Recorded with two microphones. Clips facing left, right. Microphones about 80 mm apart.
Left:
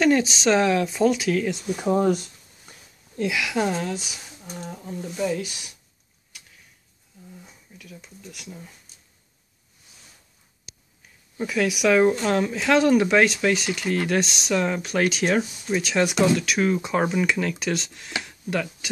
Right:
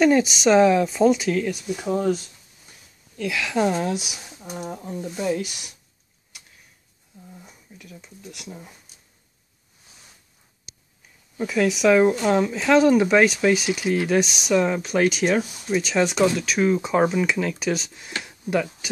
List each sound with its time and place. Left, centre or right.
0.0 s speech: centre
1.5 s speech: left
3.3 s a woman's voice: centre
3.8 s speech: centre
7.8 s speech: centre
8.5 s speech: centre
11.3 s speech: centre